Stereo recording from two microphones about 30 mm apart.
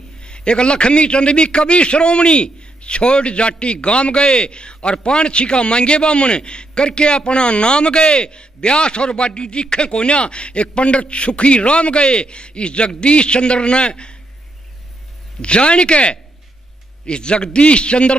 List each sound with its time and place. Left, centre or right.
0.2 s a man's voice: left
15.4 s a man's voice: left